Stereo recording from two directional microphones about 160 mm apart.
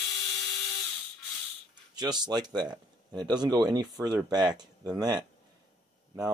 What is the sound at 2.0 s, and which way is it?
Speech, 25° right (ahead or behind).